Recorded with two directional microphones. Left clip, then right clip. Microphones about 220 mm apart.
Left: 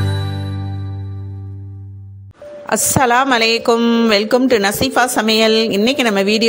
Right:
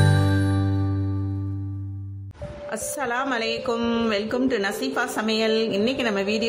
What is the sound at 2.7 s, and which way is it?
A woman's voice, 45° left (ahead or behind).